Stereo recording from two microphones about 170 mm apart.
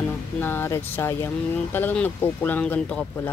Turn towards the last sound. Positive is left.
turn(degrees=10)  # may be behind; listen again after turning